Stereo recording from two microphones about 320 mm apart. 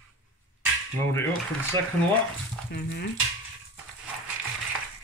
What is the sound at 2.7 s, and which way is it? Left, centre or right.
Speech, left.